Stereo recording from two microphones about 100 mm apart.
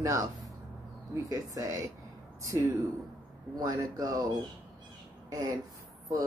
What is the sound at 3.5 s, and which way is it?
Speech, 40° right (ahead or behind).